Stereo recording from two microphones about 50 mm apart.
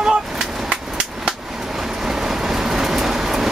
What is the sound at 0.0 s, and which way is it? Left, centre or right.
Skateboard, centre.